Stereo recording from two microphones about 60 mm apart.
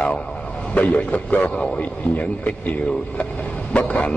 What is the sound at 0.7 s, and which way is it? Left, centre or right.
A man's voice, left.